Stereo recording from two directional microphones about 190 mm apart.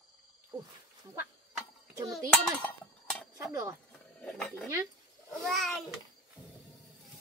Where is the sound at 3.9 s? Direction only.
5° left (ahead or behind).